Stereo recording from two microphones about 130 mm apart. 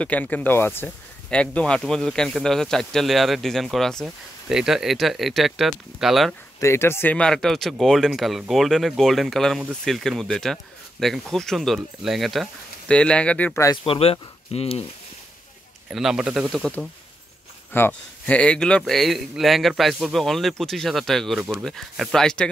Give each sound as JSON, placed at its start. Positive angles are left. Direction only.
{"t": 0.0, "sound": "speech", "side_deg": 10}
{"t": 6.6, "sound": "speech", "side_deg": 20}
{"t": 13.8, "sound": "speech", "side_deg": 45}
{"t": 15.9, "sound": "speech", "side_deg": -5}
{"t": 17.7, "sound": "speech", "side_deg": 15}